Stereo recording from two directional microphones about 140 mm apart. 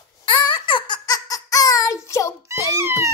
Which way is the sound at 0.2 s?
35° left (ahead or behind).